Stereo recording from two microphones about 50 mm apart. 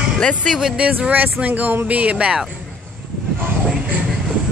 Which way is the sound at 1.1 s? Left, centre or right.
Right.